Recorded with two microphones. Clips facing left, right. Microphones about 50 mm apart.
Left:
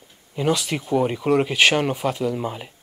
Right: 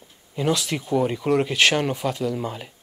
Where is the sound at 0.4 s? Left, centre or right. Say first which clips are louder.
Left 1 dB; centre.